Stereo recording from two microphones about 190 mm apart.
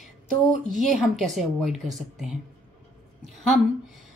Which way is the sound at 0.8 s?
Centre (ahead or behind).